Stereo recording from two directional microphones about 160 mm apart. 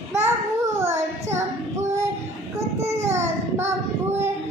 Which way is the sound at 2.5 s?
20° right (ahead or behind).